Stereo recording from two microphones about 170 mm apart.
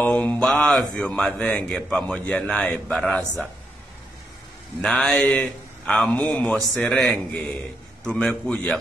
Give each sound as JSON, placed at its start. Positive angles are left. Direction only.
{"t": 0.0, "sound": "speech", "side_deg": 5}
{"t": 4.8, "sound": "a man's voice", "side_deg": 5}